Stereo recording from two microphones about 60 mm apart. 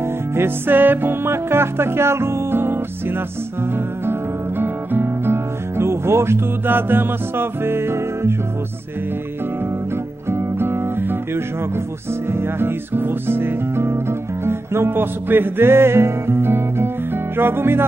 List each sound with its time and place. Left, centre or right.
0.4 s music: right
10.3 s music: right